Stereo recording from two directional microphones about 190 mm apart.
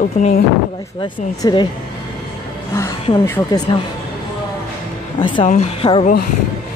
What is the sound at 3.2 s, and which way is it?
Speech, 15° left (ahead or behind).